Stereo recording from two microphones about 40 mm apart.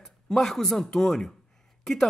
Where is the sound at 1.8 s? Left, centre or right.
Centre.